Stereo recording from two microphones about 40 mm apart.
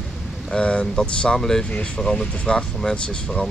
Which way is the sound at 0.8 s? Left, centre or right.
Centre.